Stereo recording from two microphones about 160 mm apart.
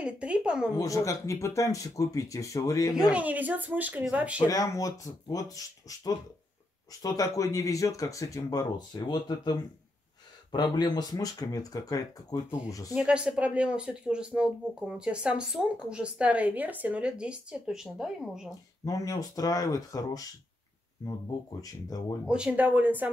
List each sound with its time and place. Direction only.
0.0 s speech: 5° right (ahead or behind)
0.7 s speech: 20° left (ahead or behind)
2.9 s speech: 5° right (ahead or behind)
4.5 s speech: 20° left (ahead or behind)
12.9 s speech: 5° right (ahead or behind)
18.9 s speech: 20° left (ahead or behind)
22.2 s speech: 5° right (ahead or behind)